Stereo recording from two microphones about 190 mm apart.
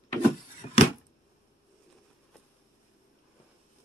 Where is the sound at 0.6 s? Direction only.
30° left (ahead or behind).